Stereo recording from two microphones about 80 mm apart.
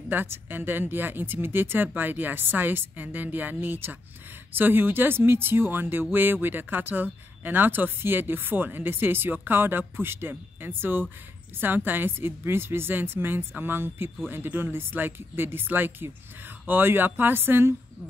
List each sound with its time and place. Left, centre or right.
0.1 s speech: right